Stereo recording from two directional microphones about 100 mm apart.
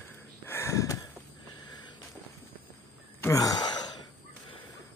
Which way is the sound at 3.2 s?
35° left (ahead or behind).